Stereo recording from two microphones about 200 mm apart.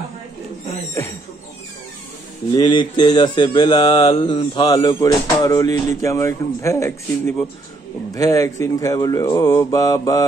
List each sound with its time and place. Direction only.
2.5 s mantra: 20° left (ahead or behind)
5.9 s speech: 15° left (ahead or behind)